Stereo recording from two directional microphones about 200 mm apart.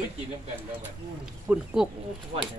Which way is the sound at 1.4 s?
5° right (ahead or behind).